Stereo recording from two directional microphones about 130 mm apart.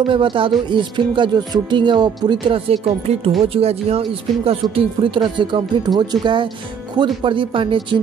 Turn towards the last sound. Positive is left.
turn(degrees=-40)  # may be behind; listen again after turning